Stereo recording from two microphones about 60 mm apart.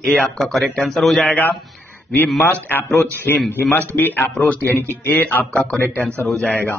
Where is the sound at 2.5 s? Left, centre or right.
Left.